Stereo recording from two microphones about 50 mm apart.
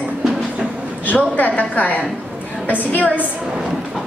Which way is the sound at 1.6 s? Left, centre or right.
Left.